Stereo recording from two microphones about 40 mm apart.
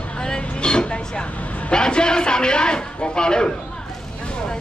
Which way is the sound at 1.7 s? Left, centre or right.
Left.